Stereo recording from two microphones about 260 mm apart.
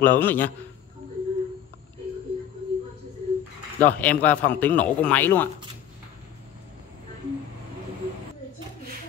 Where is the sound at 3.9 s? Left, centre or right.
Centre.